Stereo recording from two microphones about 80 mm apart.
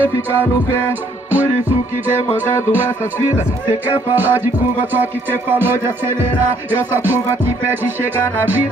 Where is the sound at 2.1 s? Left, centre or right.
Right.